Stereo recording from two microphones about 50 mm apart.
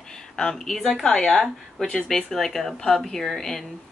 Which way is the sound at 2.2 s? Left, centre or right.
Centre.